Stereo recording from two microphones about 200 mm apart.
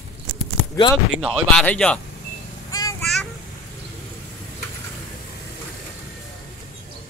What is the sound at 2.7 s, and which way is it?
Vehicle, 15° left (ahead or behind).